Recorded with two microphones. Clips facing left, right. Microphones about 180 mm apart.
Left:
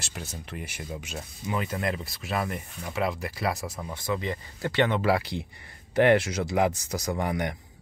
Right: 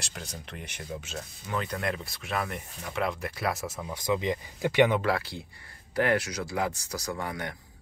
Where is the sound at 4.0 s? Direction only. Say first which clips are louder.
Right 3 dB; 15° right (ahead or behind).